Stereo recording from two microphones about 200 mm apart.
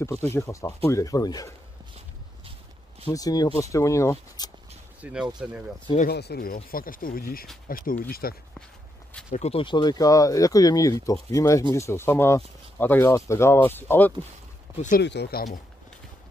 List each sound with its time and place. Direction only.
0.3 s speech: 15° left (ahead or behind)
3.1 s speech: 20° left (ahead or behind)
5.0 s speech: 10° right (ahead or behind)
5.9 s speech: 50° left (ahead or behind)
9.3 s speech: 30° left (ahead or behind); by 14.1 s 10° left (ahead or behind)
14.8 s speech: 40° left (ahead or behind)
15.0 s speech: 55° left (ahead or behind)